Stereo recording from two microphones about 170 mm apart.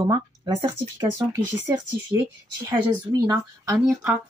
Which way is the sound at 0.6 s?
15° right (ahead or behind).